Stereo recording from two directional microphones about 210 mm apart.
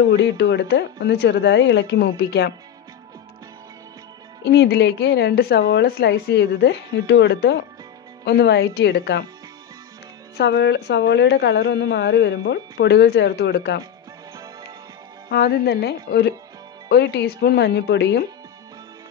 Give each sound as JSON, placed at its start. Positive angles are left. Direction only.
{"t": 0.1, "sound": "speech", "side_deg": 55}
{"t": 4.5, "sound": "speech", "side_deg": 50}
{"t": 10.3, "sound": "speech", "side_deg": 55}
{"t": 15.2, "sound": "speech", "side_deg": 50}